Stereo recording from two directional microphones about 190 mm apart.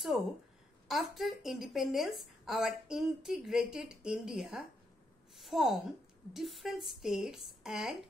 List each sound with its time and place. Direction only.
0.8 s a woman's voice: centre (ahead or behind)
5.3 s a sound: centre (ahead or behind)
6.3 s a woman's voice: centre (ahead or behind)